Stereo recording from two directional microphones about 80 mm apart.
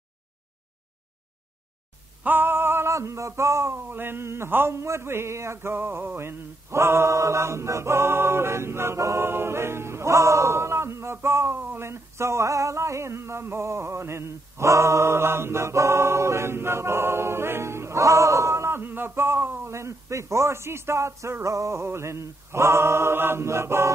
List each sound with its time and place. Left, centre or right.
2.2 s male singing: right
19.7 s speech: right